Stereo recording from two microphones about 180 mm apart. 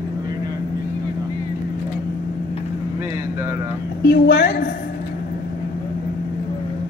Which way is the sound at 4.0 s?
60° left (ahead or behind).